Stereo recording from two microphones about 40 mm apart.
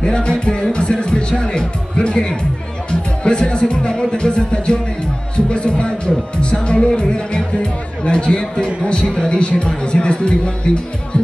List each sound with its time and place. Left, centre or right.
0.0 s music: left
2.9 s speech: left
8.3 s a man's voice: centre
8.8 s speech: left